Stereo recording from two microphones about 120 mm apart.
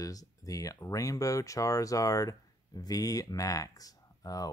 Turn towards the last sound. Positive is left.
turn(degrees=30)  # may be behind; listen again after turning